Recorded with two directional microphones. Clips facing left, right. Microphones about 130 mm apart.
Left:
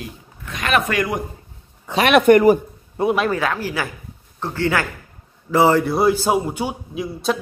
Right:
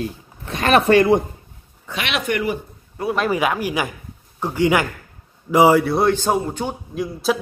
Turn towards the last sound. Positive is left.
turn(degrees=0)  # may be behind; listen again after turning